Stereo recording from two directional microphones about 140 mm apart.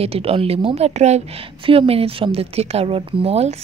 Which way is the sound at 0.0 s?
45° right (ahead or behind).